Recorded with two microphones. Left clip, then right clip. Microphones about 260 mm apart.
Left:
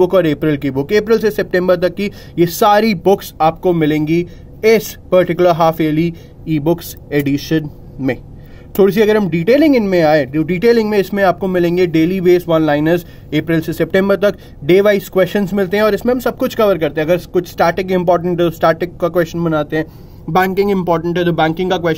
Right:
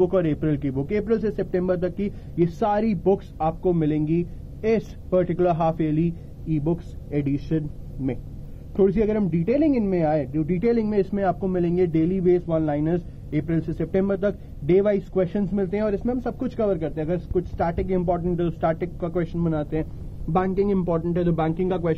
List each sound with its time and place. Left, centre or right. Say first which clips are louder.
0.0 s speech: left 10 dB; left